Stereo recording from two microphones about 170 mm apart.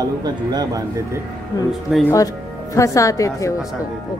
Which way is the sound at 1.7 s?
Centre (ahead or behind).